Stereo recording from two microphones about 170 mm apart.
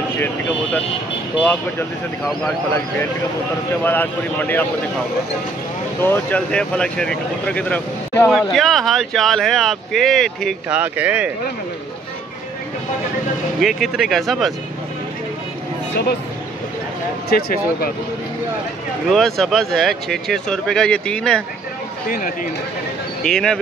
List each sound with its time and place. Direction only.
1.4 s speech: 10° left (ahead or behind)
3.8 s speech: 10° left (ahead or behind)
5.9 s speech: 10° left (ahead or behind)
10.7 s speech: 10° right (ahead or behind)
13.6 s speech: centre (ahead or behind)
17.3 s speech: 65° left (ahead or behind)
19.0 s speech: centre (ahead or behind)
22.1 s speech: 55° left (ahead or behind)
23.2 s speech: 5° left (ahead or behind)